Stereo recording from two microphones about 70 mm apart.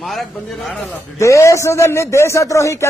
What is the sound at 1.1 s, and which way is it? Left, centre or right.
A man's voice, left.